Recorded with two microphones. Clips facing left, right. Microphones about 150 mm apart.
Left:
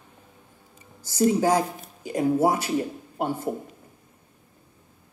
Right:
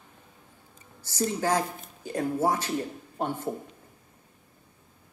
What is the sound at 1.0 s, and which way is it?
Speech, 10° left (ahead or behind).